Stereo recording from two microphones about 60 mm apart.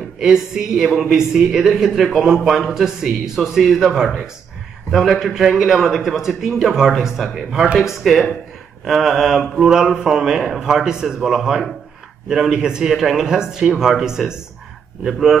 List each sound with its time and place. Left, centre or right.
0.2 s a man's voice: centre